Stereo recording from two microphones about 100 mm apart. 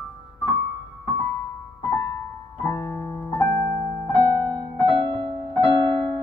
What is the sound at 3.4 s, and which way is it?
Piano, 25° left (ahead or behind).